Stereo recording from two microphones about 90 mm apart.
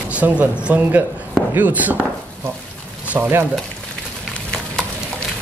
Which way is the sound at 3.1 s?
20° right (ahead or behind).